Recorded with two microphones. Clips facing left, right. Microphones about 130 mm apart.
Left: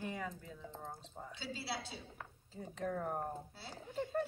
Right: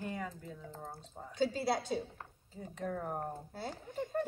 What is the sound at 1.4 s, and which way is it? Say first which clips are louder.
Speech: right 12 dB; 45° right (ahead or behind).